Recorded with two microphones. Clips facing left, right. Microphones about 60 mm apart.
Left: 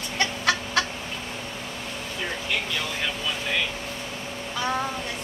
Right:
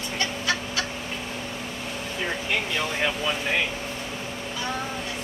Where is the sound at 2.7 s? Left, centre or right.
Right.